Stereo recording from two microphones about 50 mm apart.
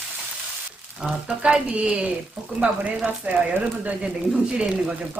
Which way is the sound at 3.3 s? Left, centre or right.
Right.